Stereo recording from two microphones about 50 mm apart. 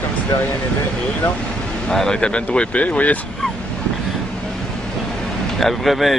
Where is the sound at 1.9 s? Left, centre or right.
Centre; by 3.2 s left.